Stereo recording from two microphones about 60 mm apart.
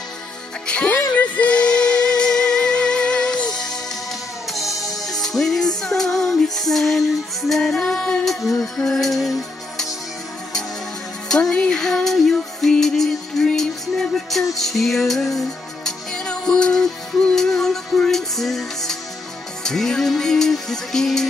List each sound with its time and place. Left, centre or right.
0.7 s speech: centre
1.1 s music: left
4.6 s music: centre
11.2 s music: centre
11.8 s music: centre